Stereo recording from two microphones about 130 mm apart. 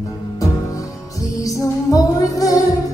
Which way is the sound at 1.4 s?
25° left (ahead or behind).